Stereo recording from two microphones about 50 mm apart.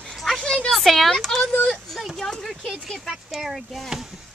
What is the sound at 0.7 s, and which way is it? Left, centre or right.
Speech, centre.